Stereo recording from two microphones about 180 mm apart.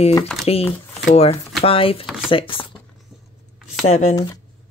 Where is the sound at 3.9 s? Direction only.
40° left (ahead or behind).